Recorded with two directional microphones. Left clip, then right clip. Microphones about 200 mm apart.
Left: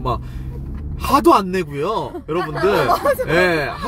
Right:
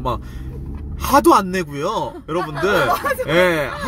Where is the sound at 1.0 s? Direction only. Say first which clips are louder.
Even; 15° right (ahead or behind).